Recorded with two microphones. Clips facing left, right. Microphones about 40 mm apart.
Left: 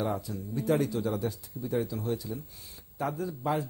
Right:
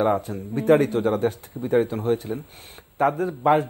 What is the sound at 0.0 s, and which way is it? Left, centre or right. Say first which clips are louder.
A man's voice: right 10 dB; right.